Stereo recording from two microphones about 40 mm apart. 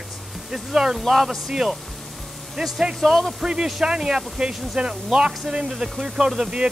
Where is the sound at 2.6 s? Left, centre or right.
Centre.